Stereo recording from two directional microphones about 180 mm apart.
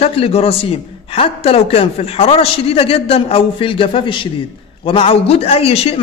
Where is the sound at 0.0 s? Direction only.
35° left (ahead or behind).